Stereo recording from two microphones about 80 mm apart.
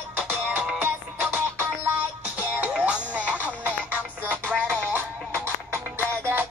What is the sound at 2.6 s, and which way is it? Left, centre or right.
Music, right.